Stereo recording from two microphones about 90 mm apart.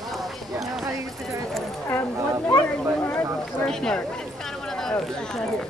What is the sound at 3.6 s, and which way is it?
Speech, 5° left (ahead or behind).